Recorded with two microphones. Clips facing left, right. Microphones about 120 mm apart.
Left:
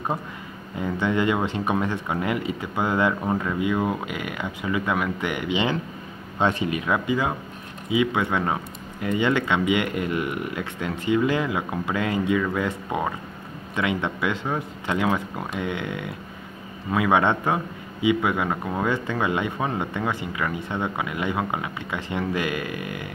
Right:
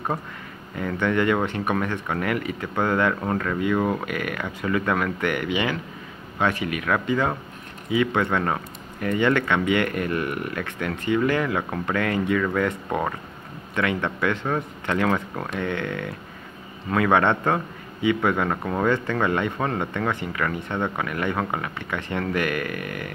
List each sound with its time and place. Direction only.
0.7 s speech: 15° left (ahead or behind)